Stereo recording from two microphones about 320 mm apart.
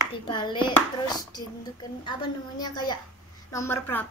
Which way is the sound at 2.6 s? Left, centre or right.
Centre.